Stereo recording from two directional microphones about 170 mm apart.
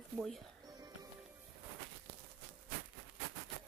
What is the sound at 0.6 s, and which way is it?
Music, 25° right (ahead or behind).